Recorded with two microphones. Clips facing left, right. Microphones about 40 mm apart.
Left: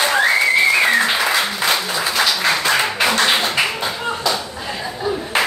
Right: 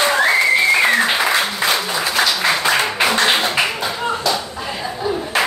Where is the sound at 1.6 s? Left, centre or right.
Centre.